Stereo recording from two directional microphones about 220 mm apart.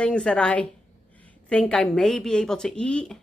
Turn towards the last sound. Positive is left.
turn(degrees=5)  # may be behind; listen again after turning